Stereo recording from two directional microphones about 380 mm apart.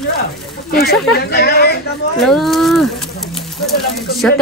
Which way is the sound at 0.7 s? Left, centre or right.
Left.